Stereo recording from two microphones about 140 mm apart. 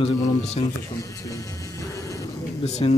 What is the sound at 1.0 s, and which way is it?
Music, 25° left (ahead or behind).